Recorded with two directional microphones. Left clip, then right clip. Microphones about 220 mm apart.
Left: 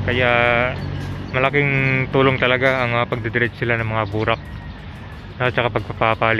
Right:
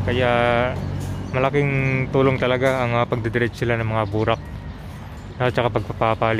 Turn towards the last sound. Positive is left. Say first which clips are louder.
# left 2 dB
turn(degrees=-15)  # may be behind; listen again after turning